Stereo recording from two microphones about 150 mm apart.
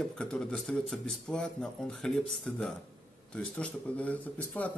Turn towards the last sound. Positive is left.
turn(degrees=10)  # may be behind; listen again after turning